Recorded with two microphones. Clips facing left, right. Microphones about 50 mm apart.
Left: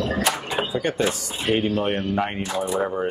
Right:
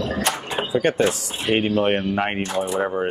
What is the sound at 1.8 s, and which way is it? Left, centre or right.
Speech, right.